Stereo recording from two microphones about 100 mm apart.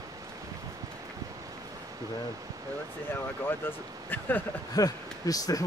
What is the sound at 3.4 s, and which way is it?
Speech, 20° left (ahead or behind).